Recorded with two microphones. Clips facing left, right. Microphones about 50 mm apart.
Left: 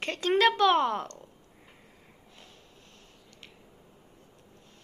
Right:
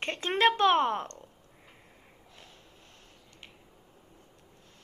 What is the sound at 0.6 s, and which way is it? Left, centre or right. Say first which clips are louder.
Speech: left 1 dB; right.